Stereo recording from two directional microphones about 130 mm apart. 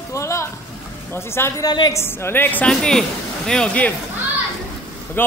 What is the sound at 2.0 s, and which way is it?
Speech, 20° left (ahead or behind).